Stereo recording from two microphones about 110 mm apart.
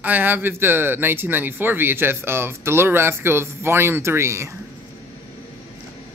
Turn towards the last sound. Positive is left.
turn(degrees=-25)  # may be behind; listen again after turning